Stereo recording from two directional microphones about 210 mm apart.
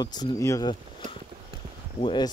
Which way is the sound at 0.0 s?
20° left (ahead or behind).